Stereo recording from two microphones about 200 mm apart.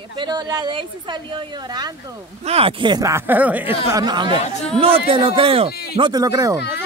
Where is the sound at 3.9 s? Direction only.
20° right (ahead or behind).